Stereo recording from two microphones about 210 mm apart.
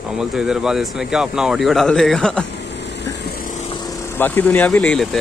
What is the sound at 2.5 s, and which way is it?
Vehicle, 55° left (ahead or behind).